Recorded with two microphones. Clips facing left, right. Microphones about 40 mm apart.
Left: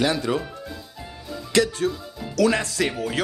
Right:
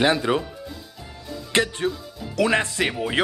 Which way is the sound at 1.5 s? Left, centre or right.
Right.